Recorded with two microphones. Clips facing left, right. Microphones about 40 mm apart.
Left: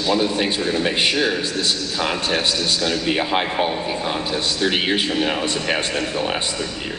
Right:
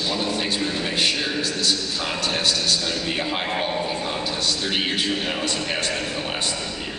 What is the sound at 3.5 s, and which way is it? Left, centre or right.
A man's voice, centre.